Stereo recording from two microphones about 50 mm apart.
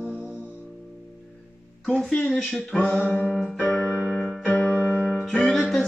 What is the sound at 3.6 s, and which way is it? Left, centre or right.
Keyboard, left.